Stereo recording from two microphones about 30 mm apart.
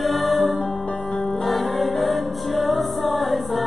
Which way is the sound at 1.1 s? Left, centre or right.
Centre.